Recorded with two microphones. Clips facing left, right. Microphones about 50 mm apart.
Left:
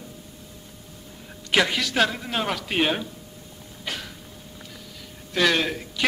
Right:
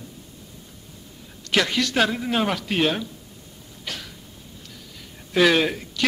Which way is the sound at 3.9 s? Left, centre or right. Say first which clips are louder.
Left 2 dB; centre.